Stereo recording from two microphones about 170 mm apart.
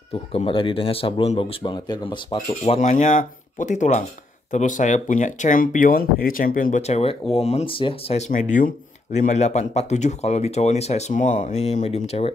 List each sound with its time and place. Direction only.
0.1 s speech: 35° left (ahead or behind)
2.6 s speech: 45° left (ahead or behind)
8.3 s speech: 50° left (ahead or behind)